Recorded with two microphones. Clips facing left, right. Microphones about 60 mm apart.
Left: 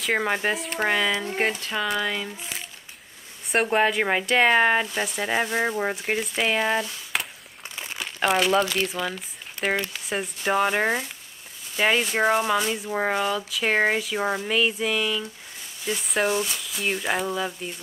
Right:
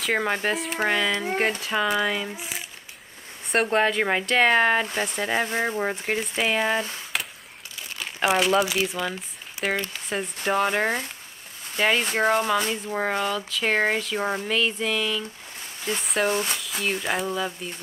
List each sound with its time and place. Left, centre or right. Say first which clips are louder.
0.0 s speech: even; centre
1.6 s speech: right 3 dB; centre
3.4 s speech: even; centre
7.1 s a sound: left 2 dB; centre
8.0 s speech: even; centre
16.3 s speech: right 1 dB; right
16.8 s speech: left 1 dB; centre